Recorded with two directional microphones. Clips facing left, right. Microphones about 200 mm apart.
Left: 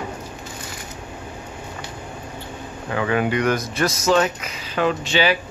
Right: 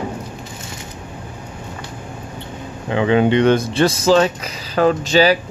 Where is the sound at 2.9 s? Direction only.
25° right (ahead or behind).